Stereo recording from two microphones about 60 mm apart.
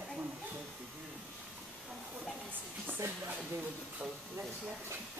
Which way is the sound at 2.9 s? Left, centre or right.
Right.